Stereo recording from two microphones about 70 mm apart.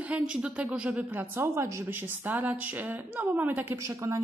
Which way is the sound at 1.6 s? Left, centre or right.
Right.